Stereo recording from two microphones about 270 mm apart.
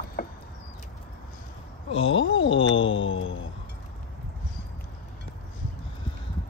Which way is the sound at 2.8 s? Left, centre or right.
Left.